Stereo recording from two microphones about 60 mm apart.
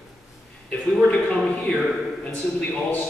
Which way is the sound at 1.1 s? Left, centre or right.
Centre.